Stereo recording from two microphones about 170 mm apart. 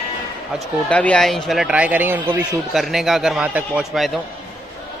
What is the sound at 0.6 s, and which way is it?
Speech, 5° left (ahead or behind).